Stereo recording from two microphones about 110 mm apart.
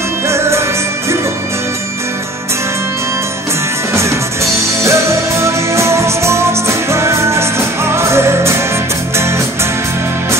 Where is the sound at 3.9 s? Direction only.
25° right (ahead or behind).